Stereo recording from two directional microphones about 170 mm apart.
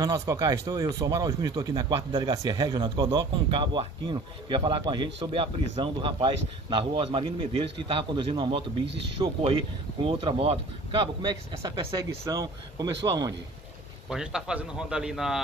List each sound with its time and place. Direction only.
0.0 s a man's voice: 20° right (ahead or behind)
14.0 s a man's voice: 5° right (ahead or behind)